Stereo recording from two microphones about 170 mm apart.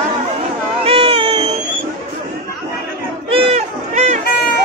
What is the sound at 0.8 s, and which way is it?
Cat, 35° right (ahead or behind).